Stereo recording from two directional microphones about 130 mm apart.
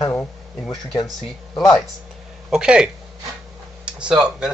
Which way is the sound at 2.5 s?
5° right (ahead or behind).